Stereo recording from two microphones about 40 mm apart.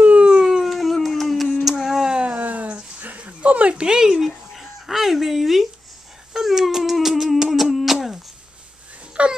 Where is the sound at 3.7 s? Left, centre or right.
Centre.